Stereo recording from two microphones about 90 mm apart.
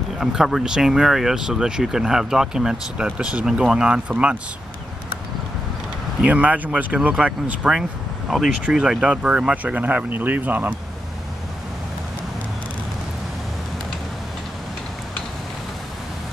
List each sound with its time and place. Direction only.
0.2 s speech: 5° right (ahead or behind)
6.2 s speech: 15° right (ahead or behind)